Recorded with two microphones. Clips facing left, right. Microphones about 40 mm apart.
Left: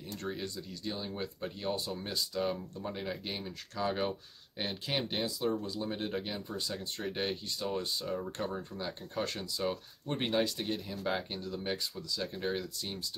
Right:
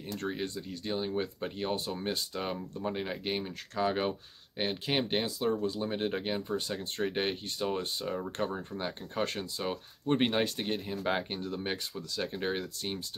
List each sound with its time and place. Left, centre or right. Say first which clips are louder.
0.3 s speech: right 3 dB; right
8.7 s speech: right 3 dB; right